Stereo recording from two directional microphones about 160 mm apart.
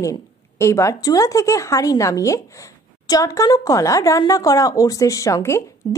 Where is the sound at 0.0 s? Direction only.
20° left (ahead or behind).